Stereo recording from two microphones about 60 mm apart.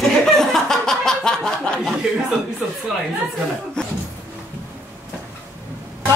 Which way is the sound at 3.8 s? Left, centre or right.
Centre.